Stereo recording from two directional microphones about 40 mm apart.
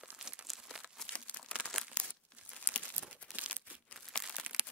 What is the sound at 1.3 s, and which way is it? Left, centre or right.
Crumpling, left.